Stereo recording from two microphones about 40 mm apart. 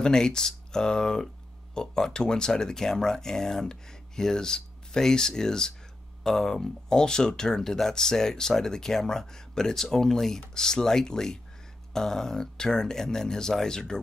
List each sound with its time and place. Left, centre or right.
0.0 s speech: centre